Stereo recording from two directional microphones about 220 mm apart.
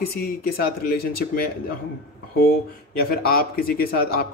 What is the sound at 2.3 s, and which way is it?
A man's voice, 45° left (ahead or behind).